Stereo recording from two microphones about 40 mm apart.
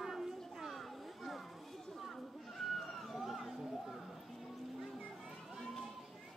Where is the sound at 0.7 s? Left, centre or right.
Centre.